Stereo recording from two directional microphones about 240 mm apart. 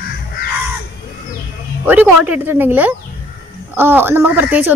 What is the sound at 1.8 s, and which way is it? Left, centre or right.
Speech, centre.